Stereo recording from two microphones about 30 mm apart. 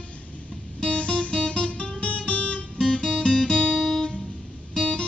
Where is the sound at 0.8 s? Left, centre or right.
Left.